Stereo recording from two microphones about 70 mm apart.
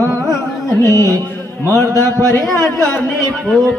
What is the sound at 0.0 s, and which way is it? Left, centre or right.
Carnatic music, right.